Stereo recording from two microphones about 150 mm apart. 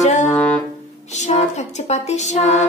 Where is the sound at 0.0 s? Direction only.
50° left (ahead or behind).